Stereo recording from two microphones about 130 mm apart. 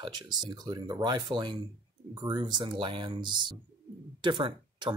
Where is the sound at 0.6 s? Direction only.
30° right (ahead or behind).